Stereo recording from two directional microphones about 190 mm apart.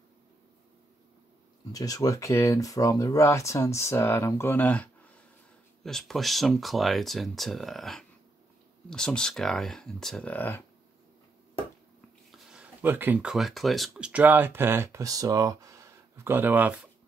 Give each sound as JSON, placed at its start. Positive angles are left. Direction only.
{"t": 1.7, "sound": "speech", "side_deg": 20}
{"t": 12.3, "sound": "speech", "side_deg": -5}